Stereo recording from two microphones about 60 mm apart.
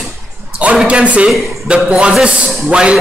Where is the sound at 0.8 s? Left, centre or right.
Right.